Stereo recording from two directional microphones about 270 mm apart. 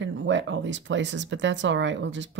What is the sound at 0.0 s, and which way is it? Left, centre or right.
Speech, right.